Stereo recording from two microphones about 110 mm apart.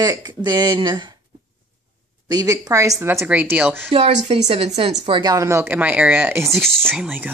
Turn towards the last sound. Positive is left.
turn(degrees=-15)  # may be behind; listen again after turning